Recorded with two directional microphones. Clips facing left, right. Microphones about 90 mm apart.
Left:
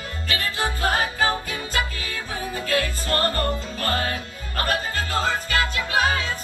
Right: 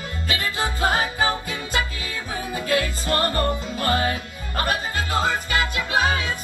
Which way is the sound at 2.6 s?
15° right (ahead or behind).